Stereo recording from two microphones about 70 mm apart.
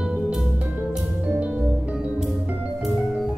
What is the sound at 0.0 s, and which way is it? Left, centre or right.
Music, centre.